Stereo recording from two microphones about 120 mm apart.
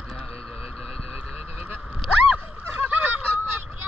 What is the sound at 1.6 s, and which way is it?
Honk, 10° right (ahead or behind).